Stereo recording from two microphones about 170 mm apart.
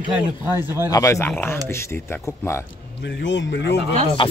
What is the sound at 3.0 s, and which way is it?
Speech, 85° left.